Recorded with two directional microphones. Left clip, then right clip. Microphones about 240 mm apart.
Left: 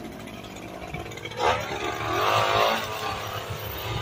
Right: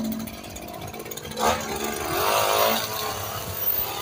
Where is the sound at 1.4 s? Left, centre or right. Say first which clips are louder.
Right 1 dB; right.